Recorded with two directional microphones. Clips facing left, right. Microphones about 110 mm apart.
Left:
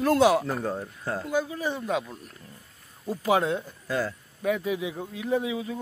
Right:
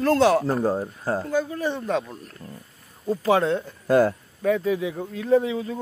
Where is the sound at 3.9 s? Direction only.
55° right (ahead or behind).